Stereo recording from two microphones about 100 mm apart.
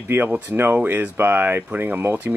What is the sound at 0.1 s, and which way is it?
Speech, 15° right (ahead or behind).